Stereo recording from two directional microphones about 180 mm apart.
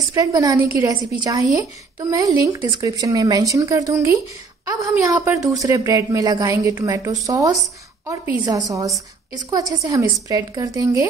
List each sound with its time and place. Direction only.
0.1 s a woman's voice: 20° right (ahead or behind)